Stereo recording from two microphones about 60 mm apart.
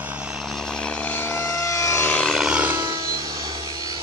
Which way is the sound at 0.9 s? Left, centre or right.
Left.